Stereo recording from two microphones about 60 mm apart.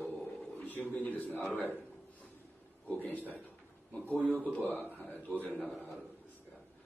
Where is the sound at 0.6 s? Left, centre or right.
Left.